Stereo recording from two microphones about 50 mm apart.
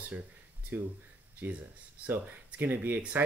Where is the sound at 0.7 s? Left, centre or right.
Right.